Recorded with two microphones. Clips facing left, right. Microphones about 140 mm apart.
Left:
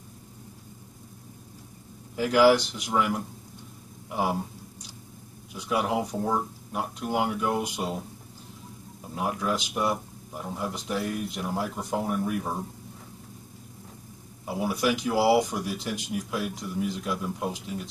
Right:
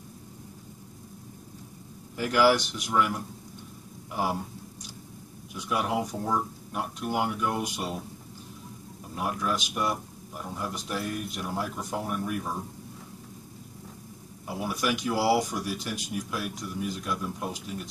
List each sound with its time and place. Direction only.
2.1 s speech: 20° left (ahead or behind)
5.5 s speech: 25° left (ahead or behind)
9.1 s speech: 20° left (ahead or behind)
14.4 s speech: 20° left (ahead or behind)